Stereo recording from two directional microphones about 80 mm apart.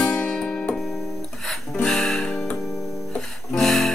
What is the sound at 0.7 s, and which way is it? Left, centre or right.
Music, centre.